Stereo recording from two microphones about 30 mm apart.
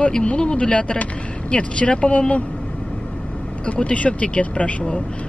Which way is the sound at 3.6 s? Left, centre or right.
Left.